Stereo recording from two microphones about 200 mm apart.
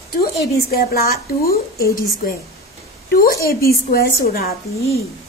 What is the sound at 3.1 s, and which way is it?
A woman's voice, 50° left (ahead or behind).